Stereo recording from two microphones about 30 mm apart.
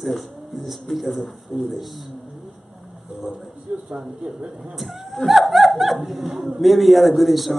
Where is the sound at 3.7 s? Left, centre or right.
Right.